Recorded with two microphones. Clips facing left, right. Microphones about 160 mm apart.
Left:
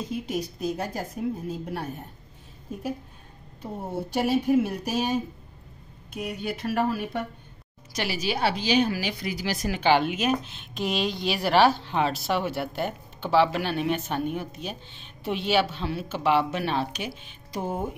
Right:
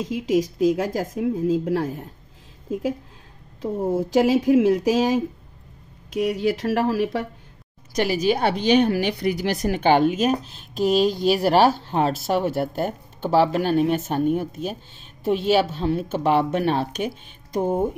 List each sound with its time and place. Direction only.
0.0 s a woman's voice: 90° right
7.9 s speech: 50° right (ahead or behind)